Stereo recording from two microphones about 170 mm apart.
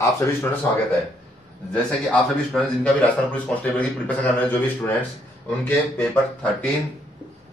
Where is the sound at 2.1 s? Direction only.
5° left (ahead or behind).